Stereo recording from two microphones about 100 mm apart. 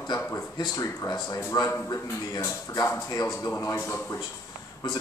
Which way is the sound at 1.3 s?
35° left (ahead or behind).